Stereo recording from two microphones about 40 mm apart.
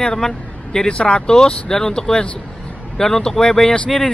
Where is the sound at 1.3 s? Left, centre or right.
Centre.